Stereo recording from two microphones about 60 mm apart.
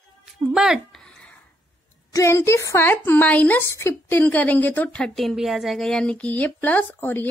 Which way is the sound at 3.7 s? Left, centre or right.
Left.